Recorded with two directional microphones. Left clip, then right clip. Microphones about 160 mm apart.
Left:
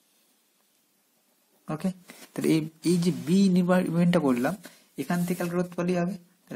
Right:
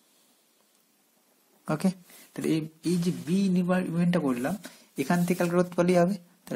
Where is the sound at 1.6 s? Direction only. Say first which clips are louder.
Right 4 dB; 30° right (ahead or behind).